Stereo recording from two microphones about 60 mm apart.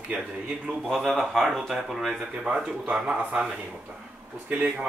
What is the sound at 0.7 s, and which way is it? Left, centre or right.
Speech, centre.